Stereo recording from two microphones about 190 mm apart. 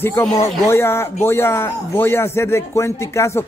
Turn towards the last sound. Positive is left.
turn(degrees=15)  # may be behind; listen again after turning